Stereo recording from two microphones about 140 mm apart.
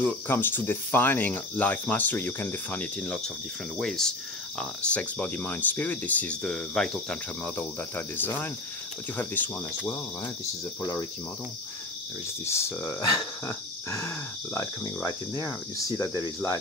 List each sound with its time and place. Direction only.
0.0 s speech: 15° left (ahead or behind)
10.8 s speech: 25° left (ahead or behind)
12.4 s speech: 20° left (ahead or behind)